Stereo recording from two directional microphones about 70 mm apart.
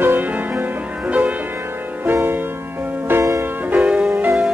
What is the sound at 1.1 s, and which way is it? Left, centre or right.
Music, centre.